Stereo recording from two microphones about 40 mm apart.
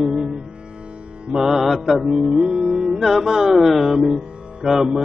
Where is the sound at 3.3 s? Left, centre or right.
Centre.